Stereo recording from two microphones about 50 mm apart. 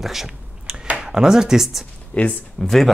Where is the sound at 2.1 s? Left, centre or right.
Left.